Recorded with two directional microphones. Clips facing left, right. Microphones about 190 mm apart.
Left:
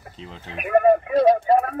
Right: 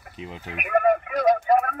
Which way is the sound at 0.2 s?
10° right (ahead or behind).